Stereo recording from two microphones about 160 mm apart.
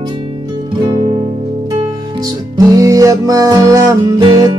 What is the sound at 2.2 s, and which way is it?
Music, 20° right (ahead or behind).